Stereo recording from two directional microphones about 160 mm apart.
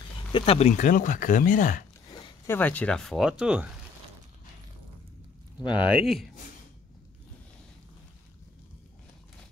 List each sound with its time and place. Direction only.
0.3 s speech: 40° left (ahead or behind); by 1.9 s 55° left (ahead or behind)
2.4 s speech: 10° left (ahead or behind); by 3.7 s 5° right (ahead or behind)
5.9 s speech: 5° right (ahead or behind)